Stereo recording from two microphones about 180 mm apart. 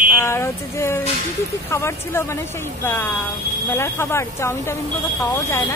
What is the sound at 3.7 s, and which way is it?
A woman's voice, 15° left (ahead or behind).